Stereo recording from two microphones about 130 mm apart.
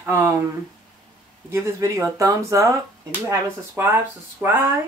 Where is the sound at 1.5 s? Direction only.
20° right (ahead or behind).